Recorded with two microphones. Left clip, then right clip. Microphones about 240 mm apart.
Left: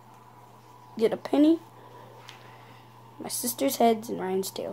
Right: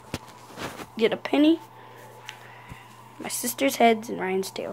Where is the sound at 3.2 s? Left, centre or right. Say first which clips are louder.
Right 3 dB; centre.